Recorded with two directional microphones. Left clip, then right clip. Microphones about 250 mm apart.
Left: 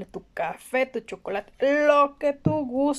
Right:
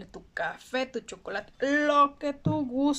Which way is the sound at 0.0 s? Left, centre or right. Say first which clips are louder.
Left 3 dB; centre.